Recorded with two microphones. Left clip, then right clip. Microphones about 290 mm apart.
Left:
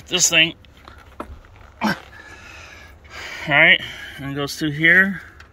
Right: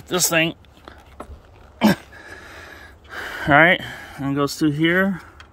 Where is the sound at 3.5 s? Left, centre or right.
Right.